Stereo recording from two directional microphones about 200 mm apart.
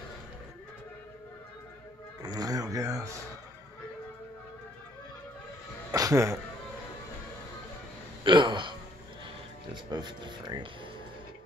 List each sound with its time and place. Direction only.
2.2 s a sound: 20° right (ahead or behind)
5.9 s music: 15° right (ahead or behind)
8.2 s speech: 25° right (ahead or behind)
9.8 s speech: 20° right (ahead or behind)